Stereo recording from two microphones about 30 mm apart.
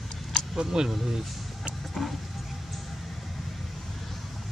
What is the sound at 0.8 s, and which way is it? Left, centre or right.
Speech, centre.